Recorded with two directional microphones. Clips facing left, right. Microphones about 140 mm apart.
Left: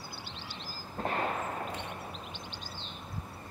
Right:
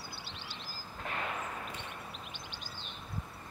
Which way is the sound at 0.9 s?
40° left (ahead or behind).